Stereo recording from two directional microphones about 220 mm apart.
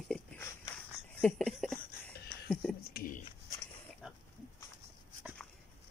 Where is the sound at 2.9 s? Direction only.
40° left (ahead or behind).